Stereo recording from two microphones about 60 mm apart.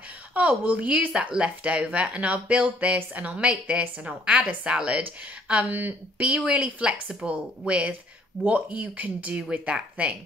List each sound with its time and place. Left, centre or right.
0.3 s a woman's voice: centre